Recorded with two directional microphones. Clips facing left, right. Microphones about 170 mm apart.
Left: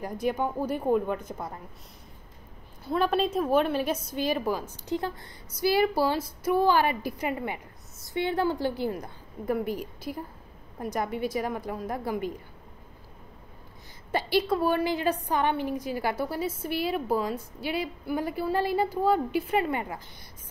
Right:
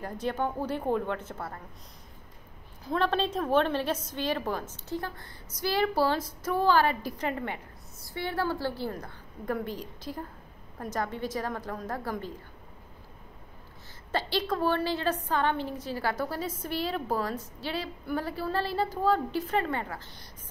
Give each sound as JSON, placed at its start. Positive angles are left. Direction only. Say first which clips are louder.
{"t": 0.0, "sound": "a woman's voice", "louder": "left 3 dB", "side_deg": 10}
{"t": 2.8, "sound": "a woman's voice", "louder": "left 2 dB", "side_deg": 5}
{"t": 14.1, "sound": "a woman's voice", "louder": "left 4 dB", "side_deg": 10}